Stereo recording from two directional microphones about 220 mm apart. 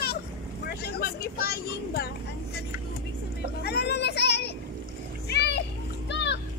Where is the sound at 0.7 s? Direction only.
45° left (ahead or behind).